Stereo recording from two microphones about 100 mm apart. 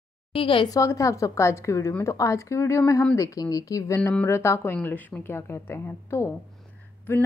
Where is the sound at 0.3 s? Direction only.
65° left (ahead or behind).